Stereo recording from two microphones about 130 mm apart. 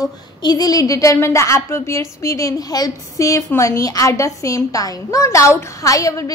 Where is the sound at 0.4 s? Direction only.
30° left (ahead or behind).